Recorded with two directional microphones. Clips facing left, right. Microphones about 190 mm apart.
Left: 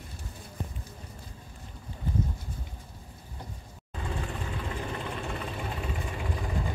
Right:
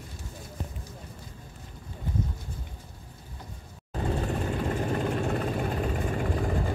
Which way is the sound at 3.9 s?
40° right (ahead or behind).